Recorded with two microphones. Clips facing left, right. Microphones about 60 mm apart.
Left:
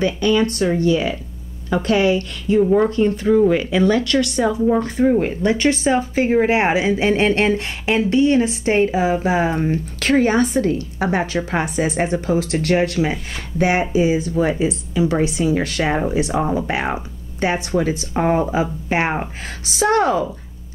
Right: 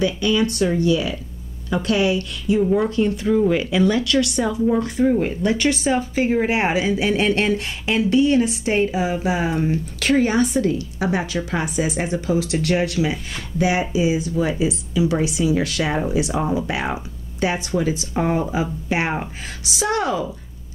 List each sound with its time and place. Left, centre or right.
0.0 s a woman's voice: left
2.6 s a woman's voice: left
18.1 s a woman's voice: left